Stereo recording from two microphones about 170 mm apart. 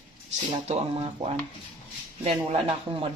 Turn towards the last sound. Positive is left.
turn(degrees=-35)  # may be behind; listen again after turning